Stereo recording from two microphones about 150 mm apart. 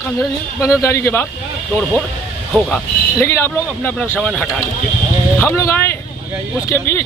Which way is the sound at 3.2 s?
15° left (ahead or behind).